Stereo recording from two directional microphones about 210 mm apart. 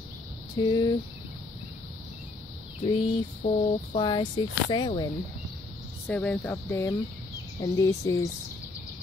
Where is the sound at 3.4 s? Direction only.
25° left (ahead or behind).